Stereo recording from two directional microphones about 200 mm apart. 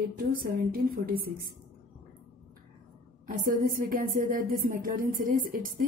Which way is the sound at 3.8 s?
45° right (ahead or behind).